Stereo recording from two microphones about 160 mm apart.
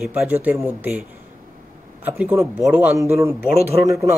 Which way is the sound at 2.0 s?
10° right (ahead or behind).